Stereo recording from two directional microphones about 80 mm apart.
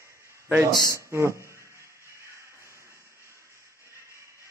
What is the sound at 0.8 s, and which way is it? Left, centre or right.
Speech, right.